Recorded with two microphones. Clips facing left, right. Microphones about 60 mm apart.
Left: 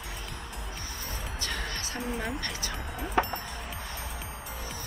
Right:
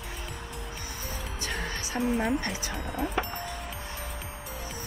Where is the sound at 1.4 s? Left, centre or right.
Centre.